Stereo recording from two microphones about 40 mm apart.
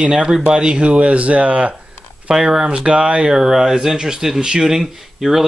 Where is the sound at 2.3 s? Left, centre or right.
Centre.